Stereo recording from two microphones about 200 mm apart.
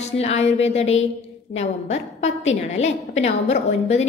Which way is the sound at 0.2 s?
30° left (ahead or behind).